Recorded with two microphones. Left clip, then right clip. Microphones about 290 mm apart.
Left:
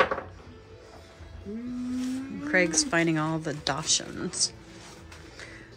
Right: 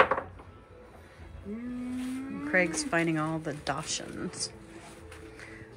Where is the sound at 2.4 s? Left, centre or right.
Centre.